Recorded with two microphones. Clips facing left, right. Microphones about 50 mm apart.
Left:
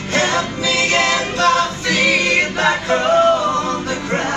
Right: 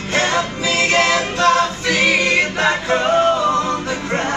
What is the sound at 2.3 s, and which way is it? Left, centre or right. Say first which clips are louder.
Choir: even; centre.